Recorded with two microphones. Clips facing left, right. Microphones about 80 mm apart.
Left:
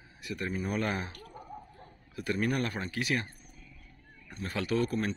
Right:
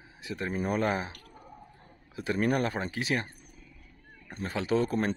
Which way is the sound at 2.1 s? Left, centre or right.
Right.